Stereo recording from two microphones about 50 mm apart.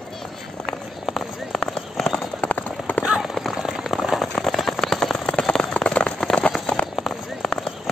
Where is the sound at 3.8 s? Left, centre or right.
Centre.